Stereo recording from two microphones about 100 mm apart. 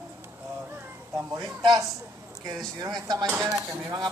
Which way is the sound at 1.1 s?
40° right (ahead or behind).